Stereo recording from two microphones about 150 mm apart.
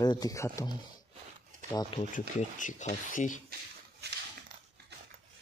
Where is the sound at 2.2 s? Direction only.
60° left (ahead or behind).